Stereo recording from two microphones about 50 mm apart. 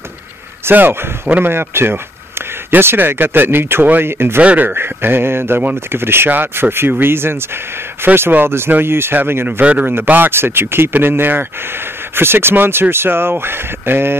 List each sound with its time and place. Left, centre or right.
0.7 s speech: right
4.4 s speech: right
4.7 s speech: right
9.6 s speech: right
9.8 s speech: right